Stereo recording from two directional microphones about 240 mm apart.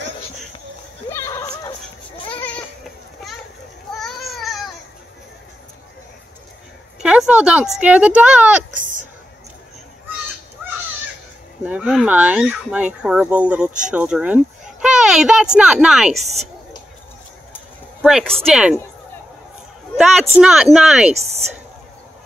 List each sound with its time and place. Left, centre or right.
1.1 s a sound: centre
3.2 s a sound: centre
4.0 s baby cry: centre
7.0 s speech: centre
8.7 s a sound: right
11.6 s speech: centre
18.0 s speech: centre
20.0 s speech: centre
21.1 s speech: right